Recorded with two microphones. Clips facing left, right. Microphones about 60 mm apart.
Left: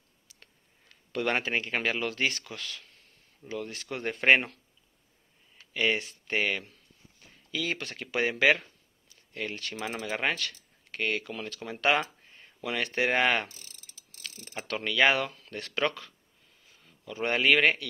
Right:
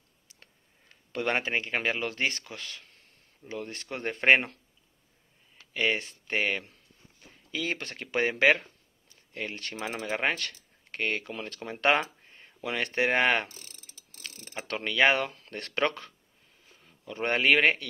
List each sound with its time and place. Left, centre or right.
0.4 s speech: right
5.7 s speech: right
9.6 s speech: right
10.3 s a sound: right
11.0 s speech: right
15.5 s speech: right
17.0 s speech: right